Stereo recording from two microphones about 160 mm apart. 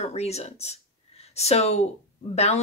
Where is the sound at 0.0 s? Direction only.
40° left (ahead or behind).